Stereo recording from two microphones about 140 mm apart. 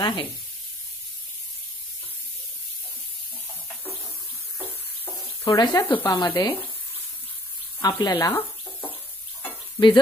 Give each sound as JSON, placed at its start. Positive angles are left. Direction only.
{"t": 0.0, "sound": "speech", "side_deg": 30}
{"t": 5.4, "sound": "speech", "side_deg": 25}
{"t": 7.8, "sound": "speech", "side_deg": 25}